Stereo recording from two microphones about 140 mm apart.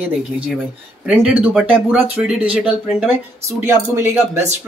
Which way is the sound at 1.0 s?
10° right (ahead or behind).